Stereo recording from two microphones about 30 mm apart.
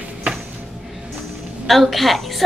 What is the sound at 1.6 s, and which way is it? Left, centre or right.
Speech, centre.